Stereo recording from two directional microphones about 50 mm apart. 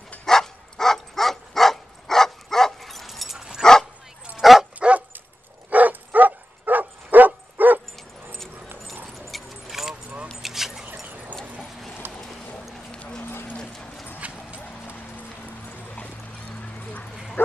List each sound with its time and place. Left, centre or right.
0.2 s dog: centre
4.7 s dog: right
5.7 s bow-wow: right
9.3 s keys jangling: centre
11.1 s clip-clop: right
12.0 s a sound: right
13.2 s clip-clop: left
14.2 s clip-clop: right